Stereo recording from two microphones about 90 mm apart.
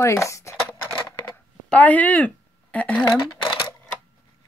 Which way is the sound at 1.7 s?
15° left (ahead or behind).